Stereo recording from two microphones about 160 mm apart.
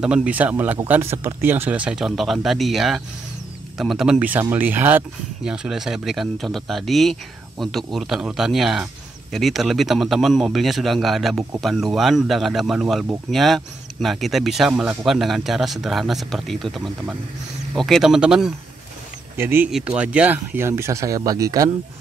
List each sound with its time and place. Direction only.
0.0 s speech: 5° right (ahead or behind); by 21.6 s 20° right (ahead or behind)